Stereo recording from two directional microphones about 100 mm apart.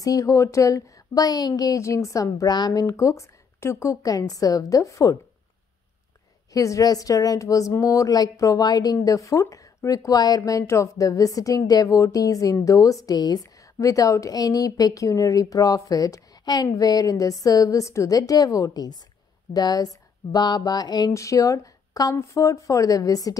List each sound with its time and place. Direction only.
0.0 s speech: 35° left (ahead or behind)
2.3 s speech: 45° left (ahead or behind)
6.5 s speech: 35° left (ahead or behind)
21.1 s speech: 30° left (ahead or behind)